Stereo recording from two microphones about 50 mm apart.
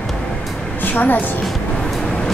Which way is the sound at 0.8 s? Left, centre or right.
Left.